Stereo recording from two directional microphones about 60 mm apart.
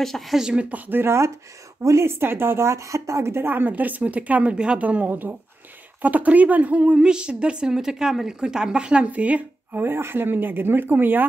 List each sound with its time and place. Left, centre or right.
0.0 s speech: centre
0.4 s speech: centre
0.8 s speech: right
1.8 s a woman's voice: right
2.0 s a woman's voice: right
6.8 s a woman's voice: centre; by 11.2 s right